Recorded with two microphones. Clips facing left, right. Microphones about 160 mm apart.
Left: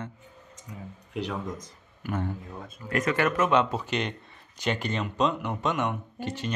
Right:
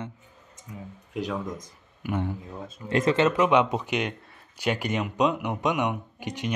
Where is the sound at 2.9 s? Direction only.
25° right (ahead or behind).